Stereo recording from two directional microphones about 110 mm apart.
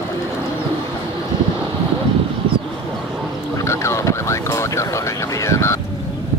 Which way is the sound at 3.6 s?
25° left (ahead or behind).